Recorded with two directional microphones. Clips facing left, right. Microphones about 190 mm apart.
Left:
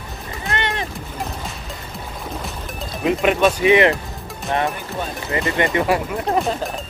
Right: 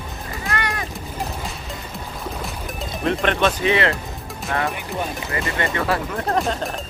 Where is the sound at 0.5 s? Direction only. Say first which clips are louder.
Left 3 dB; 25° left (ahead or behind).